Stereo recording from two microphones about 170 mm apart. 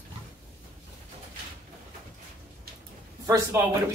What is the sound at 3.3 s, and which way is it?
Speech, 15° right (ahead or behind).